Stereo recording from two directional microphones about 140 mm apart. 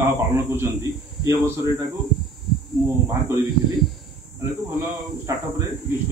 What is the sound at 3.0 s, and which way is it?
Speech, 20° right (ahead or behind).